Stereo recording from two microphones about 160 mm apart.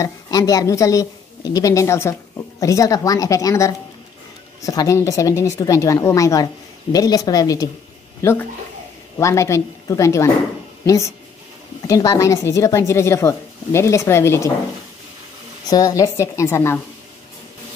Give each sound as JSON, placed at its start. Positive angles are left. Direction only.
{"t": 0.0, "sound": "a woman's voice", "side_deg": 20}
{"t": 11.9, "sound": "speech", "side_deg": 20}
{"t": 15.7, "sound": "speech", "side_deg": 20}